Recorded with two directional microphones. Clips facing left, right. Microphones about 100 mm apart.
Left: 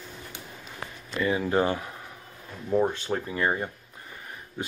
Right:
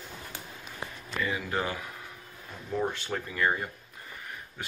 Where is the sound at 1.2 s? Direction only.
30° left (ahead or behind).